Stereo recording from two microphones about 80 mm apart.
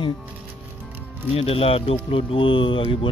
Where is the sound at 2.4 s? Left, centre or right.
Left.